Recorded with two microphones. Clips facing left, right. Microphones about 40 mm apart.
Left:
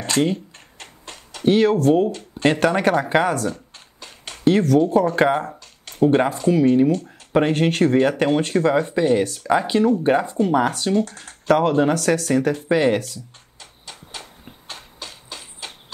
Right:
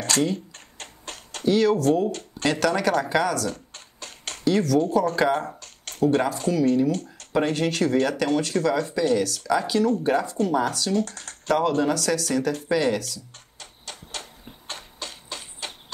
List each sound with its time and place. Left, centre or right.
0.0 s a sound: left
1.4 s speech: left
1.9 s speech: left
4.1 s a sound: centre
4.5 s speech: left
7.1 s speech: left
11.4 s speech: left